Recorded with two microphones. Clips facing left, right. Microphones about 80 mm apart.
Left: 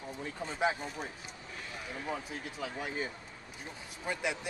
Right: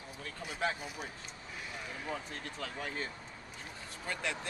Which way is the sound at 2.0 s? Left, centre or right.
Centre.